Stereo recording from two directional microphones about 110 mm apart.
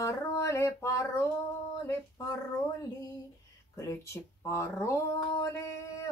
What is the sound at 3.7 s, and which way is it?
Speech, 25° left (ahead or behind).